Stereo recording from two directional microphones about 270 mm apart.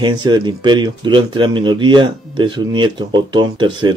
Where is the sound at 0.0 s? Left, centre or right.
Centre.